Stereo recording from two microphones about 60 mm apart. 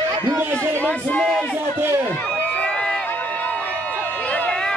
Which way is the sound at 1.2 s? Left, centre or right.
Centre.